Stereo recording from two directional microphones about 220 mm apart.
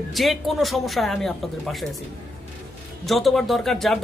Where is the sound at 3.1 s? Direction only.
Centre (ahead or behind).